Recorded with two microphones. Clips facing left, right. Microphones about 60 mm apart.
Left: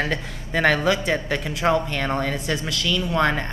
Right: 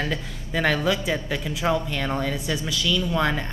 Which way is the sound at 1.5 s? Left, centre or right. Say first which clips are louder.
Left 3 dB; centre.